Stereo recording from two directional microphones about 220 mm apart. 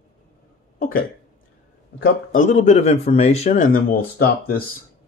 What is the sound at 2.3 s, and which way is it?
A man's voice, 35° left (ahead or behind).